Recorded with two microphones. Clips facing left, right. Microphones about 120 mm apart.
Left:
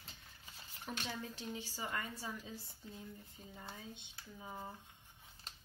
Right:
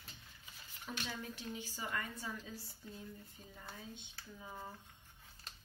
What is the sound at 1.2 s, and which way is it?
A woman's voice, 30° left (ahead or behind).